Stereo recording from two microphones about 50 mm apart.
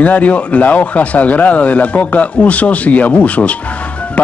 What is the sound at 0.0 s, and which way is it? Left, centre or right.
Speech, left.